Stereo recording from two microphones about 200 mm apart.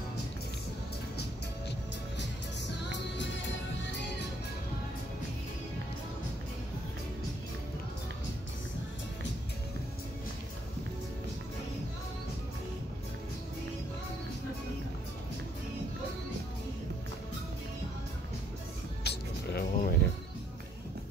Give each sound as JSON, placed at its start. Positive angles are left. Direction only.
{"t": 19.0, "sound": "music", "side_deg": 50}